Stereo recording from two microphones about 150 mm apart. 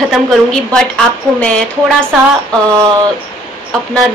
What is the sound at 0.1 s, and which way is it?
Speech, centre (ahead or behind).